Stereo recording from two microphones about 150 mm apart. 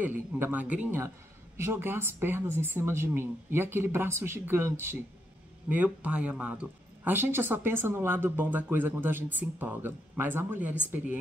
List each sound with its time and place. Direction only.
0.0 s speech: 10° right (ahead or behind)